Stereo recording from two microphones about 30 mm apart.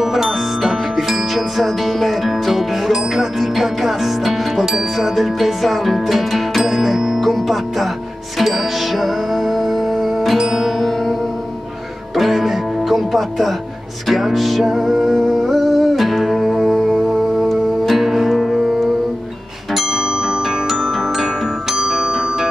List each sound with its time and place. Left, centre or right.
0.0 s music: centre
12.2 s music: centre
19.7 s music: centre
21.6 s music: centre